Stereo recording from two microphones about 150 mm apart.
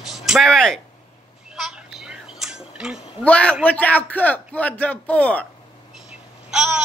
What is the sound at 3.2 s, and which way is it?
A man's voice, 10° left (ahead or behind).